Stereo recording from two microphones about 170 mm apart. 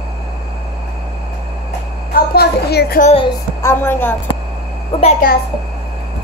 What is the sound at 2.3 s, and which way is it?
Speech, 70° left (ahead or behind).